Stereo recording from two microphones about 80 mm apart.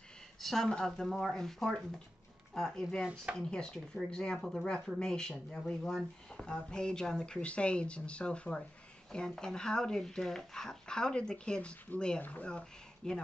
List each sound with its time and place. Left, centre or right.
0.4 s a woman's voice: centre
3.0 s speech: centre
3.3 s speech: centre